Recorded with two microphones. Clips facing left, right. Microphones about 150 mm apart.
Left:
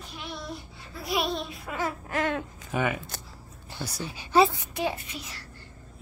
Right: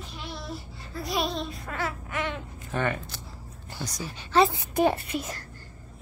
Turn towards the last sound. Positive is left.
turn(degrees=-50)  # may be behind; listen again after turning